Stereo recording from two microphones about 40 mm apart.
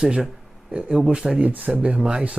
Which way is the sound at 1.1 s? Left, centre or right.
Centre.